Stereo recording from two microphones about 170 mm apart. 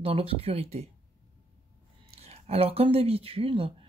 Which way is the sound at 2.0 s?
35° right (ahead or behind).